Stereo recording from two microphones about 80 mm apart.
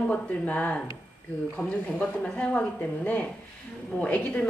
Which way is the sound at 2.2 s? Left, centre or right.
Centre.